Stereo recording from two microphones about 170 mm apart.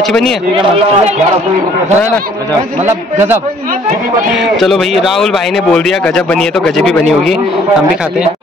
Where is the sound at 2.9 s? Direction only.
15° right (ahead or behind).